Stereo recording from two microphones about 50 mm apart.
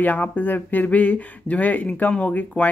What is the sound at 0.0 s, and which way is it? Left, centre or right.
Speech, left.